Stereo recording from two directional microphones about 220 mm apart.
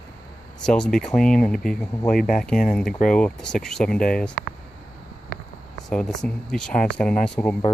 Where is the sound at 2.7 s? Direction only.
Centre (ahead or behind).